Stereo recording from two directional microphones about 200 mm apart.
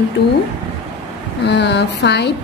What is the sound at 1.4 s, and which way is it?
Speech, 55° left (ahead or behind).